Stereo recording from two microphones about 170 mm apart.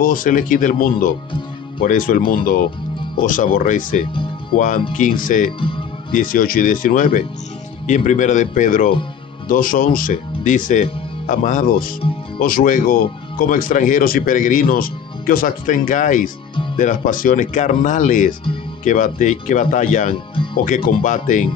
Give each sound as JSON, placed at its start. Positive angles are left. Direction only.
{"t": 0.0, "sound": "speech", "side_deg": 55}